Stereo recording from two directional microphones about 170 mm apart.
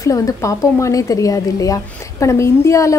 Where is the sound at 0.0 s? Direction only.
20° left (ahead or behind).